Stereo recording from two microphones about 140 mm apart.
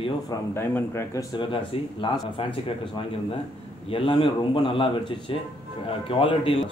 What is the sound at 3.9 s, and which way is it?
Speech, 40° left (ahead or behind).